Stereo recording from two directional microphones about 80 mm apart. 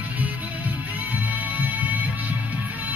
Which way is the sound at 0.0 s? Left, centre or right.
Centre.